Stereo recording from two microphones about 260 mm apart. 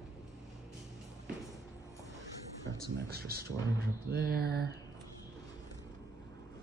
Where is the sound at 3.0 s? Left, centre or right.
Right.